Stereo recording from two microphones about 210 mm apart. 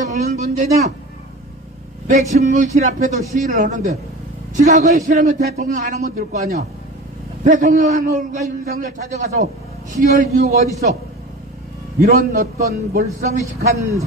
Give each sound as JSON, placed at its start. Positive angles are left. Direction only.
{"t": 0.0, "sound": "speech", "side_deg": -35}
{"t": 2.0, "sound": "a man's voice", "side_deg": -35}
{"t": 12.0, "sound": "a man's voice", "side_deg": -35}